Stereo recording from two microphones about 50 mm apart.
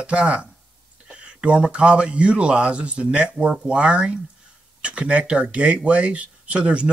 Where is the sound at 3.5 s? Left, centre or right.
Centre.